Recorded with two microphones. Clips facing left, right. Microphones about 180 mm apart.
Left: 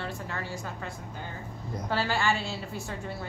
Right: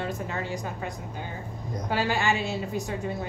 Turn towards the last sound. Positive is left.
turn(degrees=-15)  # may be behind; listen again after turning